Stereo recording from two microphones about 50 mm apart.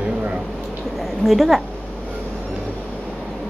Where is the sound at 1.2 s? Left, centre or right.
Centre.